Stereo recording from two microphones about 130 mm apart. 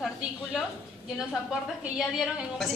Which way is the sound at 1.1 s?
5° right (ahead or behind).